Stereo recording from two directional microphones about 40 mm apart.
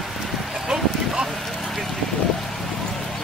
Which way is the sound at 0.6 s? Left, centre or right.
Centre.